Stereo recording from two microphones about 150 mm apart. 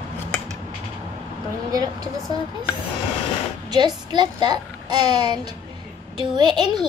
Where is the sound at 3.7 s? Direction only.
30° right (ahead or behind).